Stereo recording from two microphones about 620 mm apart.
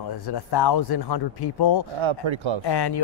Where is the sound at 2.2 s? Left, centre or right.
Right.